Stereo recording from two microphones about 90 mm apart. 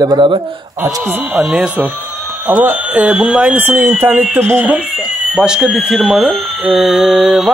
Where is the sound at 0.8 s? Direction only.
20° right (ahead or behind).